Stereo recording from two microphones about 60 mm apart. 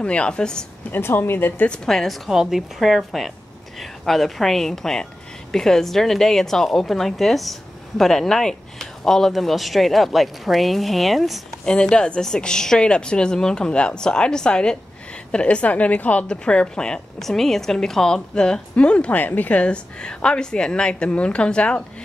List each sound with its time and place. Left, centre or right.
0.0 s a woman's voice: centre
0.9 s speech: left
1.9 s speech: centre
11.6 s a woman's voice: centre